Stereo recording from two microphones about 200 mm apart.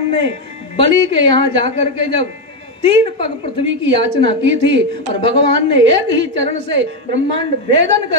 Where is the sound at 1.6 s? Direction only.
65° right (ahead or behind).